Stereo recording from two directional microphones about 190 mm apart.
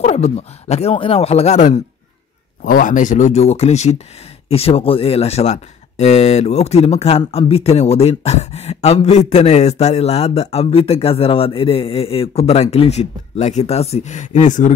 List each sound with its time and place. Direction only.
0.0 s speech: 35° left (ahead or behind)